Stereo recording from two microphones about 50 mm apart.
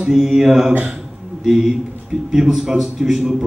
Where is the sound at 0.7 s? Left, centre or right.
Right.